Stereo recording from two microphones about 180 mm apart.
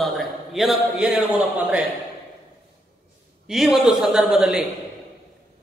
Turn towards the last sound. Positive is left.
turn(degrees=-5)  # may be behind; listen again after turning